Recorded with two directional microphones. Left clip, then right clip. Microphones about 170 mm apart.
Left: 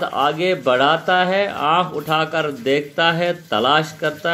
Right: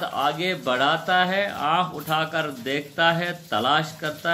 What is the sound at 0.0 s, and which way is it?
Speech, 15° left (ahead or behind).